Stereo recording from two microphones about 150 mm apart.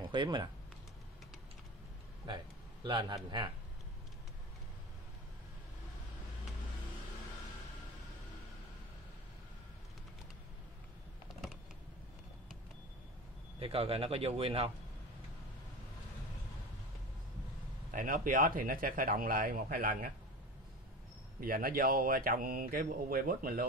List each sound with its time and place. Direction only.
0.1 s speech: 30° right (ahead or behind)
2.2 s a sound: 30° right (ahead or behind)
13.6 s speech: 40° right (ahead or behind)
17.9 s speech: 65° right (ahead or behind)
21.4 s speech: 70° right (ahead or behind)